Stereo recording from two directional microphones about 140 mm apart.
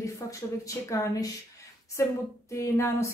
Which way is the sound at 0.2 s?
20° left (ahead or behind).